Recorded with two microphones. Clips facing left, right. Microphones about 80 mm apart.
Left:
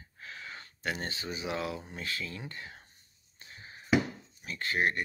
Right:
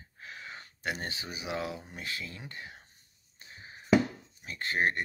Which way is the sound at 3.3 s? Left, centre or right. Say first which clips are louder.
Even; centre.